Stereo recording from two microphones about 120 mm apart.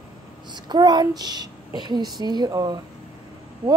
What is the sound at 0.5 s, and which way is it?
A child's voice, 35° right (ahead or behind).